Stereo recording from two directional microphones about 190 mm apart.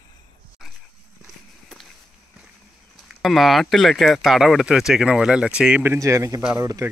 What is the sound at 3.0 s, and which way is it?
Speech, centre (ahead or behind).